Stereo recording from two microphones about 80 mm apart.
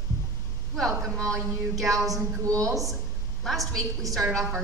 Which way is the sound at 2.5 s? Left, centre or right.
Right.